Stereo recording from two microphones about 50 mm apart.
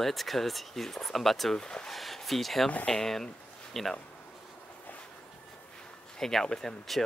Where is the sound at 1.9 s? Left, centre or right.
Centre.